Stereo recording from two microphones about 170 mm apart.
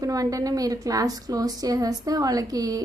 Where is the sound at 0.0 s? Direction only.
20° right (ahead or behind).